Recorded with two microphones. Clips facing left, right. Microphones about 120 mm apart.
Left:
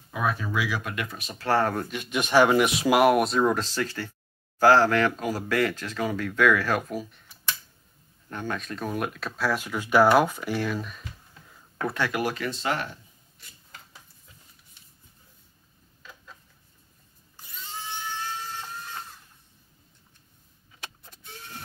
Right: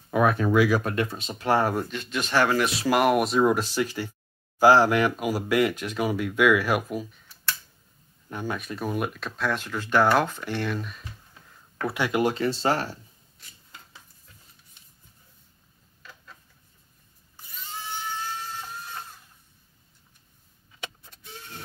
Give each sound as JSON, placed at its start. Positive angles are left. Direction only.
{"t": 0.1, "sound": "speech", "side_deg": -55}
{"t": 1.9, "sound": "speech", "side_deg": 15}
{"t": 3.0, "sound": "speech", "side_deg": 0}
{"t": 7.0, "sound": "speech", "side_deg": 0}
{"t": 8.3, "sound": "speech", "side_deg": -10}
{"t": 11.9, "sound": "speech", "side_deg": -20}